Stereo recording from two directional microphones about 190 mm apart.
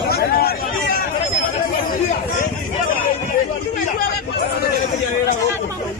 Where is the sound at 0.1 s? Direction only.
55° left (ahead or behind).